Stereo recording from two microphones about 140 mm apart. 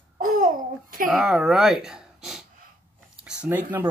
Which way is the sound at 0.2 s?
80° right.